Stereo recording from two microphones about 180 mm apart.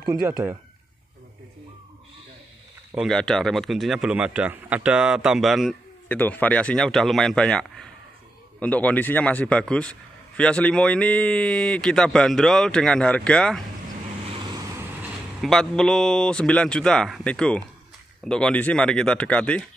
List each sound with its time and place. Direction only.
2.9 s a man's voice: centre (ahead or behind)
14.3 s vehicle: 20° right (ahead or behind)
15.4 s a man's voice: centre (ahead or behind)